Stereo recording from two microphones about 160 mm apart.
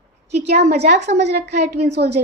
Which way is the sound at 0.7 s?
45° right (ahead or behind).